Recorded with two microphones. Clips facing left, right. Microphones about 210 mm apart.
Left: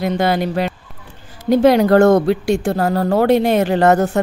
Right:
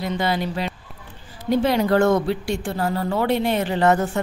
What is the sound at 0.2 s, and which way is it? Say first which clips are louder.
Speech: left 6 dB; 60° left (ahead or behind).